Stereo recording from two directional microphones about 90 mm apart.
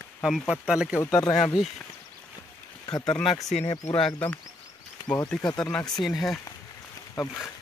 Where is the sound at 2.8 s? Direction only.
50° left (ahead or behind).